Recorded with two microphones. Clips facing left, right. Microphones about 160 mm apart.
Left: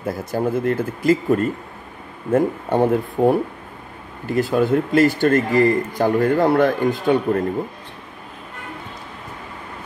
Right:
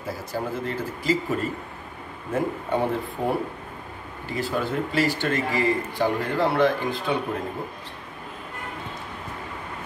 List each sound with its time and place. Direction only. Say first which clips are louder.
0.0 s speech: left 8 dB; 55° left (ahead or behind)